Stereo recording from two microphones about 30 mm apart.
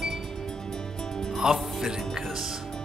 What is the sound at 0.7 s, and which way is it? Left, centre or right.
Music, left.